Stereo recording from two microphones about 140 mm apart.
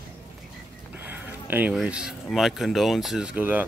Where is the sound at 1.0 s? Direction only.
15° right (ahead or behind).